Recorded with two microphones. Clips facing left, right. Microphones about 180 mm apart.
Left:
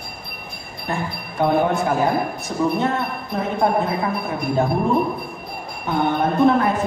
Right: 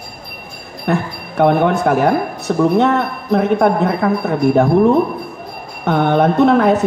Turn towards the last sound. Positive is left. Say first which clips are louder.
# right 5 dB
turn(degrees=-75)  # may be behind; listen again after turning